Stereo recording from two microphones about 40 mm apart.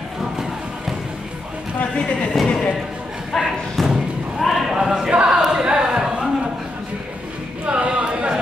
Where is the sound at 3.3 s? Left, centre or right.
Centre.